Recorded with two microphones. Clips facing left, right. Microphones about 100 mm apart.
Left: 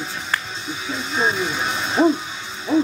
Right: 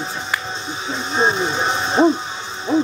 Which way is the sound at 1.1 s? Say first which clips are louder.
Right 3 dB; 30° right (ahead or behind).